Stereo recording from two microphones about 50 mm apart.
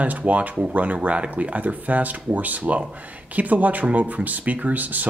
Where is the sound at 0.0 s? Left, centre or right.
Right.